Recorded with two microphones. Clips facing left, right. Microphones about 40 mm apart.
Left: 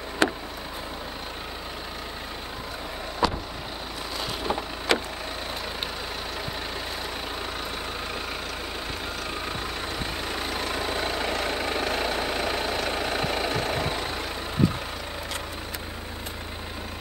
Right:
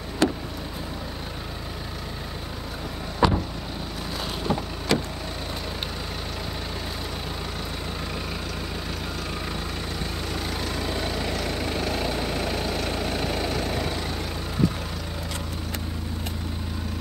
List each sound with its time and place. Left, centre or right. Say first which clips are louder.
0.2 s vehicle: right 1 dB; left
3.2 s vehicle: right 4 dB; centre
4.4 s vehicle: right 2 dB; centre
4.9 s vehicle: even; left
10.3 s vehicle: left 1 dB; left